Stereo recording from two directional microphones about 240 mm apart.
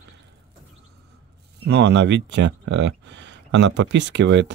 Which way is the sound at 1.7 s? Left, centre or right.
Right.